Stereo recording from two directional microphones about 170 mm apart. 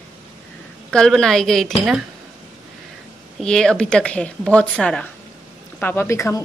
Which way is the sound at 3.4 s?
5° left (ahead or behind).